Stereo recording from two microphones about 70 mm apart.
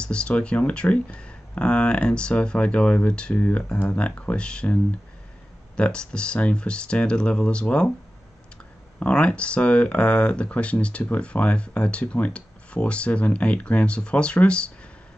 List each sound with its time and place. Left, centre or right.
0.0 s speech: centre
3.3 s speech: left
5.8 s speech: centre
9.0 s speech: centre